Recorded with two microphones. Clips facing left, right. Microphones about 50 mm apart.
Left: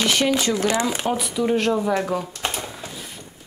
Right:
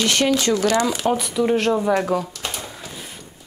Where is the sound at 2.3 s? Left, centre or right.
Left.